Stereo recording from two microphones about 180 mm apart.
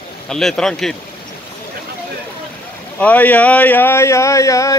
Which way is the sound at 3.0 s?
10° left (ahead or behind).